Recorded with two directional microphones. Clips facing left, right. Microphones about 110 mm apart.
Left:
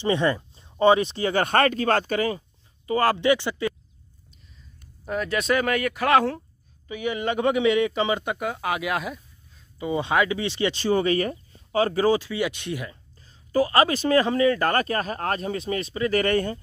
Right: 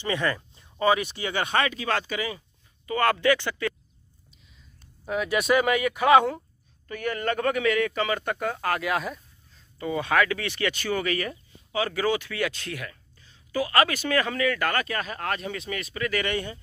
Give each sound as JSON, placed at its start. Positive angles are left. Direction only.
{"t": 0.0, "sound": "speech", "side_deg": 25}
{"t": 2.9, "sound": "speech", "side_deg": 30}
{"t": 5.0, "sound": "speech", "side_deg": -5}
{"t": 6.9, "sound": "speech", "side_deg": 10}
{"t": 9.8, "sound": "speech", "side_deg": 20}
{"t": 12.3, "sound": "speech", "side_deg": 20}
{"t": 13.2, "sound": "speech", "side_deg": 40}
{"t": 16.2, "sound": "speech", "side_deg": 45}